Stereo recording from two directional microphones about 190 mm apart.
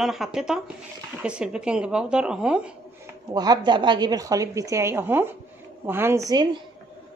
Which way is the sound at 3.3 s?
20° right (ahead or behind).